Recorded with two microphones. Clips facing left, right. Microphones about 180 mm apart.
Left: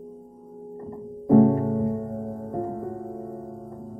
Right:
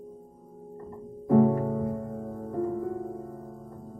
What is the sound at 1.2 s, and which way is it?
Music, 30° left (ahead or behind).